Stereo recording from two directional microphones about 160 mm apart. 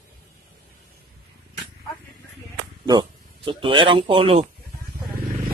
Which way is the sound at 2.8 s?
30° right (ahead or behind).